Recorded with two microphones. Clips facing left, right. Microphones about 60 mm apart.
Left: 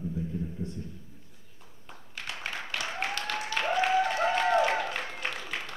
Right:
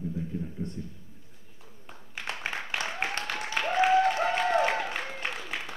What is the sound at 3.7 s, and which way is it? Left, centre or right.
Applause, centre.